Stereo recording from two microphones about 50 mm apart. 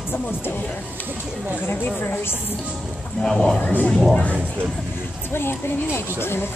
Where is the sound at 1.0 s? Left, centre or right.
Right.